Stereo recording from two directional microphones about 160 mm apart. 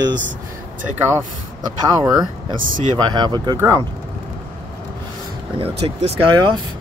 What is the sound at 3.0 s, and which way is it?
Speech, 25° right (ahead or behind).